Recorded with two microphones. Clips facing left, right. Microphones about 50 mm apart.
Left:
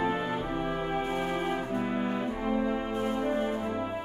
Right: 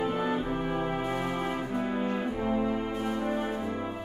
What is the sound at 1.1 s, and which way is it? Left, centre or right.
Brass instrument, centre.